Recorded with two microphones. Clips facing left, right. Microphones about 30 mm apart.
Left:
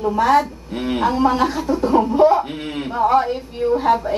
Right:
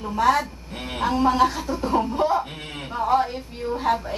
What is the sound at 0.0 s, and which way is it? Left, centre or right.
A woman's voice, centre.